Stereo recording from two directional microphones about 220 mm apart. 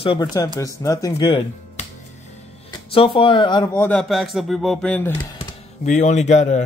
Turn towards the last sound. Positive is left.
turn(degrees=30)  # may be behind; listen again after turning